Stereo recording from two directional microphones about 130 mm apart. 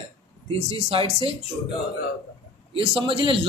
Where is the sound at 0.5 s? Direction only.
50° right (ahead or behind).